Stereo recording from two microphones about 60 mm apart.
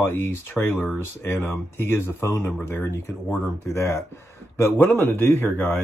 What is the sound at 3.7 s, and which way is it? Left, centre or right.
Speech, left.